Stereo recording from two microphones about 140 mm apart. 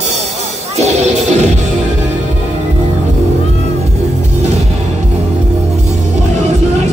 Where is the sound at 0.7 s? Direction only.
50° right (ahead or behind).